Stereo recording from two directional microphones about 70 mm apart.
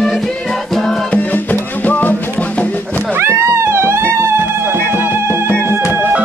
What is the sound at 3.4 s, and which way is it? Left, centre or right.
Music, right.